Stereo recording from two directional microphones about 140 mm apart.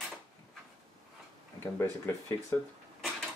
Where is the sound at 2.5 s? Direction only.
15° left (ahead or behind).